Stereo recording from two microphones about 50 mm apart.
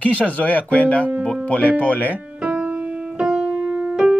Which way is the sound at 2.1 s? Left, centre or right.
Right.